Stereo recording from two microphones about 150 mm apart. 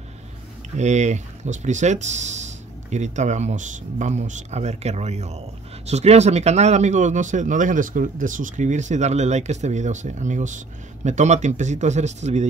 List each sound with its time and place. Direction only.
0.7 s speech: 50° right (ahead or behind)